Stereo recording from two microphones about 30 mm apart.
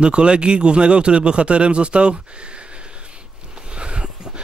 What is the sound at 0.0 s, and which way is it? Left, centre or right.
A man's voice, right.